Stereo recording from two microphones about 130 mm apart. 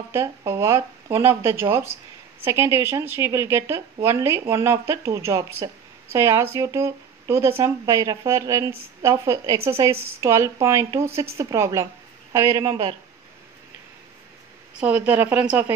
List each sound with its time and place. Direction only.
0.5 s a woman's voice: 20° right (ahead or behind)
14.8 s a woman's voice: 10° right (ahead or behind)